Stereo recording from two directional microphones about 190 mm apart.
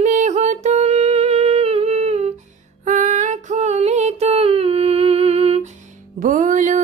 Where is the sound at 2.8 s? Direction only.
40° right (ahead or behind).